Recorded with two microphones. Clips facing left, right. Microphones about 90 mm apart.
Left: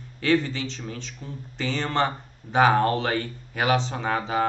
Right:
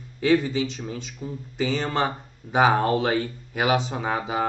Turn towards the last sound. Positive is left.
turn(degrees=-10)  # may be behind; listen again after turning